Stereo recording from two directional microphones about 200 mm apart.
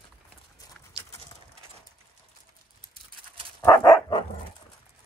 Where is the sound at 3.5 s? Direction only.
20° left (ahead or behind).